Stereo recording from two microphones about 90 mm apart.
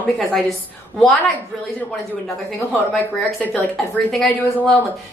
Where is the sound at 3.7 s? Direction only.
5° left (ahead or behind).